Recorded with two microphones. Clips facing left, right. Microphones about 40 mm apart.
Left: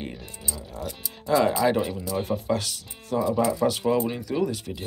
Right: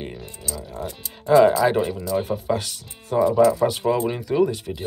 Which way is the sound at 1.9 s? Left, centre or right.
Centre.